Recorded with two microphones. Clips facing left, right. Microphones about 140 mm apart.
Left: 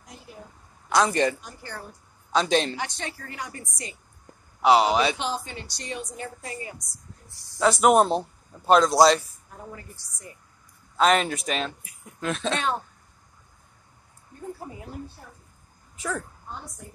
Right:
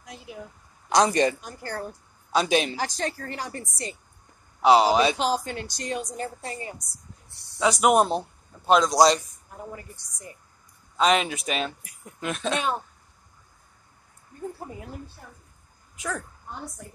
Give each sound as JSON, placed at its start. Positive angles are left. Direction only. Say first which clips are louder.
{"t": 0.0, "sound": "a sound", "louder": "right 4 dB", "side_deg": -90}
{"t": 0.8, "sound": "speech", "louder": "right 1 dB", "side_deg": -20}
{"t": 1.4, "sound": "a woman's voice", "louder": "right 5 dB", "side_deg": -45}
{"t": 2.3, "sound": "a man's voice", "louder": "even", "side_deg": -10}
{"t": 2.8, "sound": "a woman's voice", "louder": "right 4 dB", "side_deg": -40}
{"t": 4.6, "sound": "speech", "louder": "right 1 dB", "side_deg": -25}
{"t": 5.1, "sound": "a woman's voice", "louder": "right 5 dB", "side_deg": -40}
{"t": 6.0, "sound": "a woman's voice", "louder": "right 3 dB", "side_deg": -35}
{"t": 7.5, "sound": "a man's voice", "louder": "left 1 dB", "side_deg": 0}
{"t": 9.9, "sound": "a man's voice", "louder": "right 1 dB", "side_deg": -15}
{"t": 11.0, "sound": "speech", "louder": "left 1 dB", "side_deg": 0}
{"t": 16.0, "sound": "speech", "louder": "left 1 dB", "side_deg": 0}